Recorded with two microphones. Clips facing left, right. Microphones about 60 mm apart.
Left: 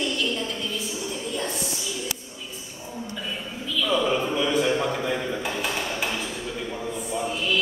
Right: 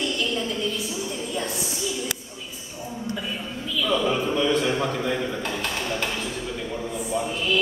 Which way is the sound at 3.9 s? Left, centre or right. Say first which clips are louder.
Even; centre.